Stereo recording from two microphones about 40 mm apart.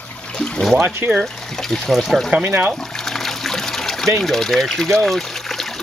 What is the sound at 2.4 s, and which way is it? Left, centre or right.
Speech, right.